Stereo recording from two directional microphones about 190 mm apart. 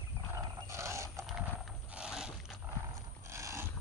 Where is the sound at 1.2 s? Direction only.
Centre (ahead or behind).